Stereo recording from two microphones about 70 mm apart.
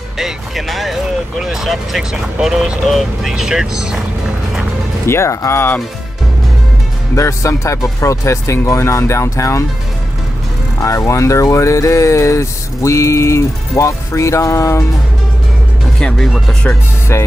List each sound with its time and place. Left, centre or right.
0.2 s speech: centre
5.0 s speech: left
7.2 s speech: left
10.8 s speech: left
16.0 s speech: centre
17.1 s speech: left